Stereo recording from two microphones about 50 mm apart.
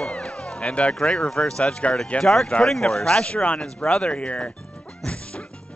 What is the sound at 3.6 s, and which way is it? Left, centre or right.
Speech, centre.